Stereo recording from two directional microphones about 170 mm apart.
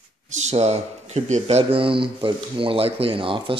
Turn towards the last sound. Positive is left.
turn(degrees=-30)  # may be behind; listen again after turning